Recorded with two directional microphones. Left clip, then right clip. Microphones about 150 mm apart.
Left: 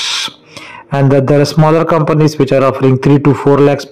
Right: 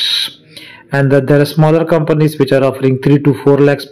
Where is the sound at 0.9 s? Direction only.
20° left (ahead or behind).